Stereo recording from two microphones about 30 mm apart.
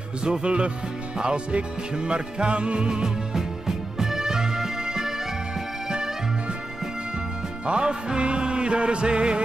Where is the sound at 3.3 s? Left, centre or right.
Centre.